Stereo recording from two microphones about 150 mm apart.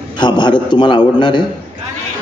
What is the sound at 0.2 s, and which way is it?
A man's voice, 30° left (ahead or behind).